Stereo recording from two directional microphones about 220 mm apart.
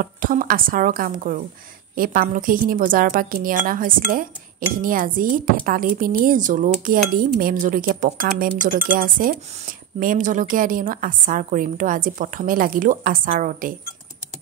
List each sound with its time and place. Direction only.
0.0 s speech: 40° right (ahead or behind)